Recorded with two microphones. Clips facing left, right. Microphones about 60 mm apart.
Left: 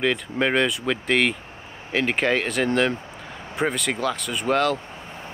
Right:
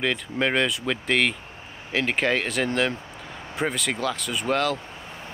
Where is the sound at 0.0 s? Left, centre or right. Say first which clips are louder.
Left 2 dB; centre.